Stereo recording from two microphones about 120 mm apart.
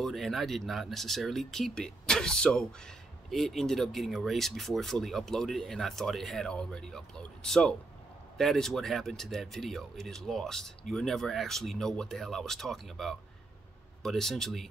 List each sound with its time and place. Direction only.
0.0 s speech: centre (ahead or behind)